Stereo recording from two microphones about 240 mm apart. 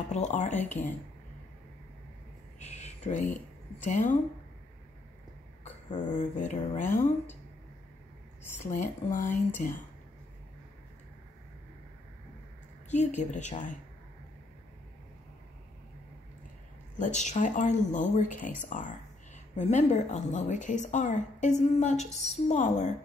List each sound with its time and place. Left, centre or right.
0.1 s speech: left
2.6 s a sound: left
3.8 s speech: left
5.6 s speech: left
8.6 s speech: left
9.1 s speech: centre
12.9 s speech: left
17.0 s speech: left